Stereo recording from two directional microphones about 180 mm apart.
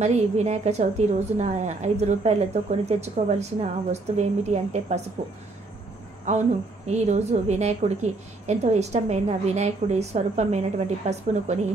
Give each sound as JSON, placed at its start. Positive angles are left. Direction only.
{"t": 0.0, "sound": "a woman's voice", "side_deg": -40}
{"t": 6.3, "sound": "a woman's voice", "side_deg": -40}